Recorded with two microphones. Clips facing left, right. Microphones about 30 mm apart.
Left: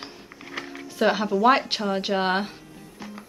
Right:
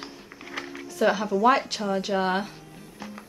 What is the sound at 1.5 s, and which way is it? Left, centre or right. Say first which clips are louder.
Speech: left 2 dB; left.